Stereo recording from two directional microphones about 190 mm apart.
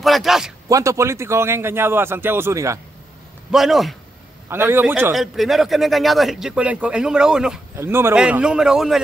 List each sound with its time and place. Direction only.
0.0 s speech: centre (ahead or behind)
0.7 s a man's voice: 15° right (ahead or behind)
3.5 s speech: centre (ahead or behind)
4.5 s speech: 10° right (ahead or behind)